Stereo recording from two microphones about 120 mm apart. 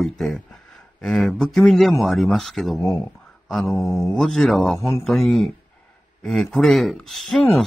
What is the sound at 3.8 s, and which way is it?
Speech, 25° left (ahead or behind).